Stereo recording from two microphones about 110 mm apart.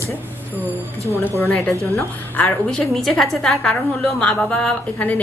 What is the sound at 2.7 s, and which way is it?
A woman's voice, 5° left (ahead or behind).